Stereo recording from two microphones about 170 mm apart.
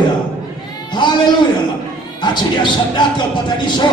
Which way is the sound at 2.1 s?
25° left (ahead or behind).